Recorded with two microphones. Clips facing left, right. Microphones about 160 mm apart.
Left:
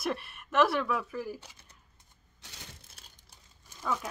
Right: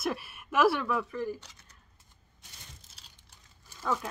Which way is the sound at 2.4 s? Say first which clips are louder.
Left 4 dB; 55° left (ahead or behind).